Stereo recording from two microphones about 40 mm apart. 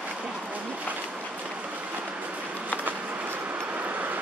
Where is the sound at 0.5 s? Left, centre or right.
Right.